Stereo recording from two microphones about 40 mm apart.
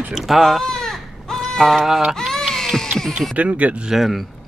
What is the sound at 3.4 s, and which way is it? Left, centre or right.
Speech, right.